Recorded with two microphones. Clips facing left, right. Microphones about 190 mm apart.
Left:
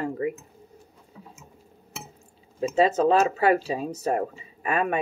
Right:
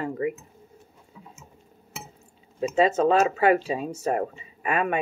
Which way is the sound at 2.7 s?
35° left (ahead or behind).